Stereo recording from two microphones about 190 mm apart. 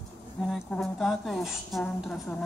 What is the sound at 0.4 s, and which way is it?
A woman's voice, centre (ahead or behind).